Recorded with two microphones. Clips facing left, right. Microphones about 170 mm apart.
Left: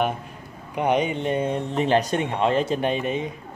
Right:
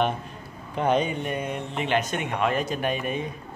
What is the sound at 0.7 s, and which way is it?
Speech, 15° left (ahead or behind).